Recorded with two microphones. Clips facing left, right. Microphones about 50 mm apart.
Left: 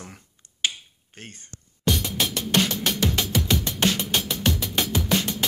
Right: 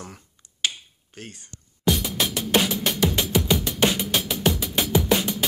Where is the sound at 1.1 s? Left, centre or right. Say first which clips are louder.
Right 2 dB; left.